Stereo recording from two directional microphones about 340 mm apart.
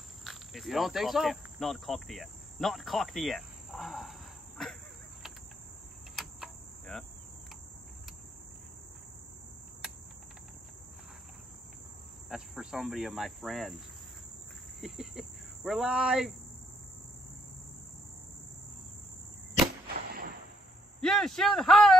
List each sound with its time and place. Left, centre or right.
0.2 s speech: centre
6.1 s cricket: centre
12.3 s cricket: centre
14.8 s speech: centre
19.9 s a sound: right
21.0 s speech: centre